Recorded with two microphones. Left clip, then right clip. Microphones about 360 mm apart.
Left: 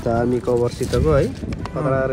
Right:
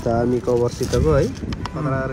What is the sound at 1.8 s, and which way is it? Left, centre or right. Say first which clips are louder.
Speech: left 5 dB; left.